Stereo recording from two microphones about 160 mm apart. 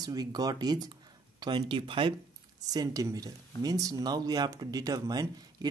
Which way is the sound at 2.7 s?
20° right (ahead or behind).